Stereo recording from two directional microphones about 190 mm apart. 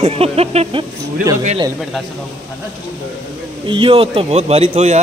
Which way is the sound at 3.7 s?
25° right (ahead or behind).